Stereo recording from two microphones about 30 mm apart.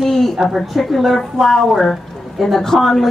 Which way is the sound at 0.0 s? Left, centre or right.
Centre.